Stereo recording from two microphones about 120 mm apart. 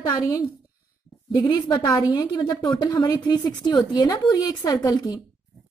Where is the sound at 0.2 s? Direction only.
30° left (ahead or behind).